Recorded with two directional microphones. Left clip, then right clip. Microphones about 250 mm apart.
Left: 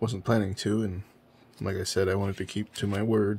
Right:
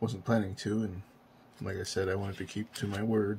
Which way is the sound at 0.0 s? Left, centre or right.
Left.